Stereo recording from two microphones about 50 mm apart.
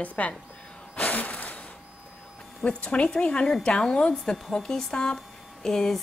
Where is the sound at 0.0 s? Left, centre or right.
Left.